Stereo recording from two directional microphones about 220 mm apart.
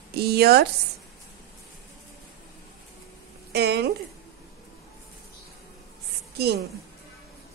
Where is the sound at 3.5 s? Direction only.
50° right (ahead or behind).